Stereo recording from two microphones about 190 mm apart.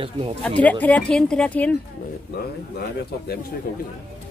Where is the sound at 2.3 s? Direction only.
55° left (ahead or behind).